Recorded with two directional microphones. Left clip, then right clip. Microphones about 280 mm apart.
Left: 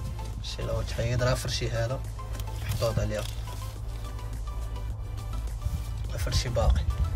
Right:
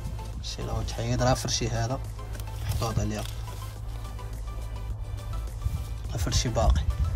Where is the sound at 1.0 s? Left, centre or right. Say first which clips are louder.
Right 4 dB; centre.